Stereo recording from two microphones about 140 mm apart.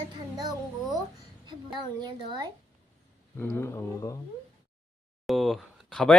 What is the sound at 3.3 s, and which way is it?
Speech, 15° left (ahead or behind).